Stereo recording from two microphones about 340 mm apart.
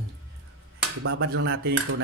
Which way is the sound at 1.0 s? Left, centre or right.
Right.